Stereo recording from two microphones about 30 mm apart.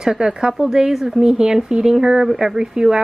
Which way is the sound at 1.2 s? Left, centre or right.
Right.